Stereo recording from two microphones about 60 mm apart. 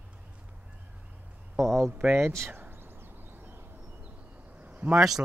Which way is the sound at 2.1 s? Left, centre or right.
Right.